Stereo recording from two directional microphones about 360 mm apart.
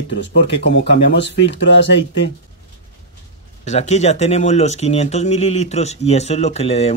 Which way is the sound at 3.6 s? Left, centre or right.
Centre.